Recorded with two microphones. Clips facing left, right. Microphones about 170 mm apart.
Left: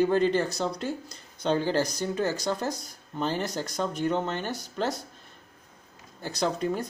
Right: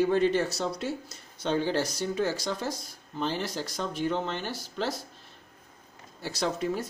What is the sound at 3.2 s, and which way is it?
Speech, 45° left (ahead or behind).